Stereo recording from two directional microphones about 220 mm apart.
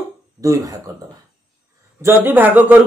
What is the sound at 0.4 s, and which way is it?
Speech, 15° right (ahead or behind).